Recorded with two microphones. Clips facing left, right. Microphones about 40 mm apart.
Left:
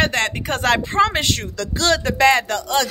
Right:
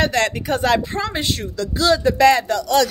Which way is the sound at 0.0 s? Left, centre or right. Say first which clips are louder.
Right 1 dB; left.